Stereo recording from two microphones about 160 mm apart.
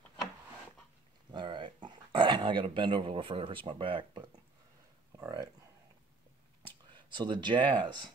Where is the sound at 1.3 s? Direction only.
30° right (ahead or behind).